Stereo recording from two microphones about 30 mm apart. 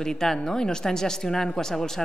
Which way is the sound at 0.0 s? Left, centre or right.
Centre.